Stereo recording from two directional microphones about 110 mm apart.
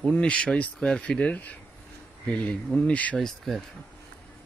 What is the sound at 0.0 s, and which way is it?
Speech, 10° left (ahead or behind).